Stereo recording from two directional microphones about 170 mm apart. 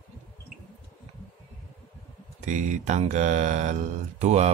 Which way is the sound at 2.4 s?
45° right (ahead or behind).